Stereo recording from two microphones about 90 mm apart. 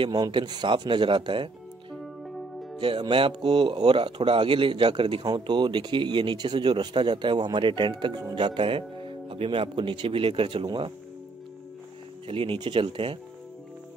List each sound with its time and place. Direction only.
0.1 s speech: 55° right (ahead or behind)
3.0 s speech: 65° right (ahead or behind)
5.2 s speech: 50° right (ahead or behind)
8.4 s speech: 65° right (ahead or behind)
12.3 s speech: 90° right
12.6 s speech: 70° right (ahead or behind)